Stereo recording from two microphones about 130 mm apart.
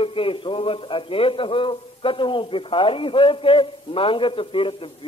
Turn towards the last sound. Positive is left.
turn(degrees=45)  # may be behind; listen again after turning